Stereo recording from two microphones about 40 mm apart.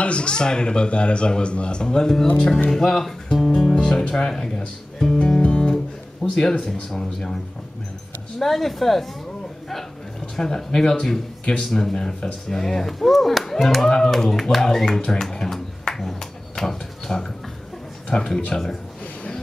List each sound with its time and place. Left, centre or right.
0.0 s speech: left
2.7 s speech: centre
3.7 s music: centre
4.9 s speech: centre
5.4 s music: left
6.2 s speech: left
6.6 s speech: centre
8.4 s speech: centre
10.3 s speech: centre
15.0 s a sound: centre
18.1 s speech: centre